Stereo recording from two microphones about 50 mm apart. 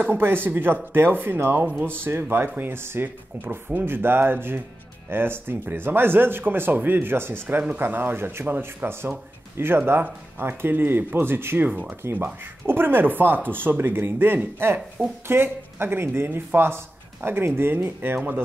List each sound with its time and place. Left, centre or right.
0.2 s speech: right
7.4 s speech: right
11.7 s speech: right
12.0 s speech: right